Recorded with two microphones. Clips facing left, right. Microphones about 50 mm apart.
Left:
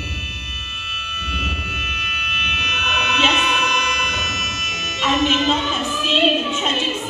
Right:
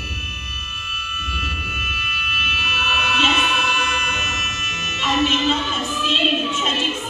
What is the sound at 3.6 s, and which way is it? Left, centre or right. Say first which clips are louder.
Music: even; right.